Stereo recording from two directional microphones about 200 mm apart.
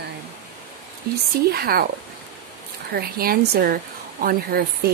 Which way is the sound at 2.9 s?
50° right (ahead or behind).